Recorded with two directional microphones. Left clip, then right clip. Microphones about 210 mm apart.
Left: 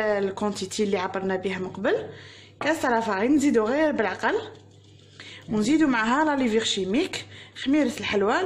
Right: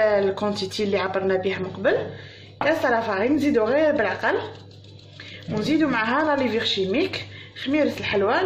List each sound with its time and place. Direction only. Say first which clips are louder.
0.0 s speech: right 5 dB; 40° left (ahead or behind)
5.5 s speech: even; 50° left (ahead or behind)